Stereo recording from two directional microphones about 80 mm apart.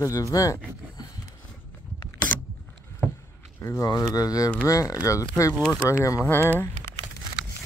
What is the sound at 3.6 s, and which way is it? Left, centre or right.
Speech, left.